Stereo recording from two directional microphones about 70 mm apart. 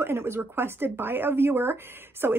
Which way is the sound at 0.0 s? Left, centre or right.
Right.